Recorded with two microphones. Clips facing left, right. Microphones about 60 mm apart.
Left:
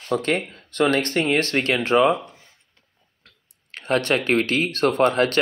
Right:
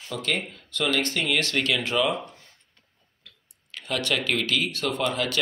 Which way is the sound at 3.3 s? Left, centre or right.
Left.